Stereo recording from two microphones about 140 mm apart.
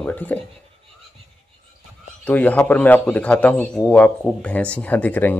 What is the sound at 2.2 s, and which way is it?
A man's voice, 10° left (ahead or behind).